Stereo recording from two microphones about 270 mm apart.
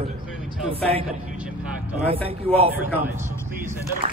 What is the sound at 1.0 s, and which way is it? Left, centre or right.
Speech, centre.